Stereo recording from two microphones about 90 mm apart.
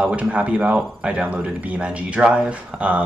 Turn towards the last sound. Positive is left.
turn(degrees=-15)  # may be behind; listen again after turning